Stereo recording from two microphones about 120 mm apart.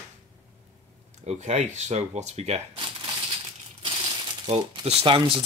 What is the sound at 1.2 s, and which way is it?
Speech, 65° right (ahead or behind).